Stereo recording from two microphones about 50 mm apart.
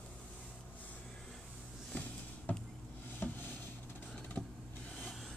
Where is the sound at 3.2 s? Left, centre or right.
Left.